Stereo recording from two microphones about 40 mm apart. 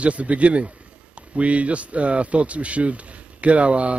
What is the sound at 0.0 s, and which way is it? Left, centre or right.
Speech, right.